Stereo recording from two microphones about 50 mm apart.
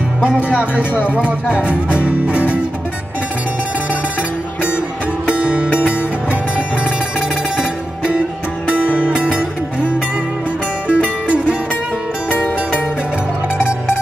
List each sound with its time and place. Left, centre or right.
0.2 s music: right
5.3 s music: right
8.8 s music: right
10.9 s music: right
12.3 s music: left